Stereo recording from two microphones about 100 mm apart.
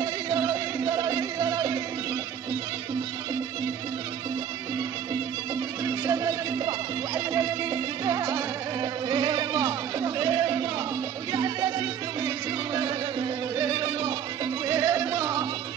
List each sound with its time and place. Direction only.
0.0 s music: 40° right (ahead or behind)
5.9 s music: 35° right (ahead or behind)
12.7 s music: 45° right (ahead or behind)